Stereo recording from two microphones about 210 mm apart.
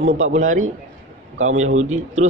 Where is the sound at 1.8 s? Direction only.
30° right (ahead or behind).